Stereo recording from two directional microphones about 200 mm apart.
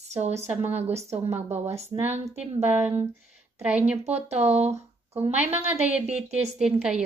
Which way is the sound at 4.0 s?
35° right (ahead or behind).